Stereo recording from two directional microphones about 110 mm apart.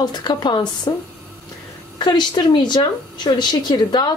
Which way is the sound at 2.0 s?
45° left (ahead or behind).